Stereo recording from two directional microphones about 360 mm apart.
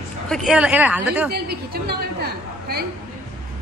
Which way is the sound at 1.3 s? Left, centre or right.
Right.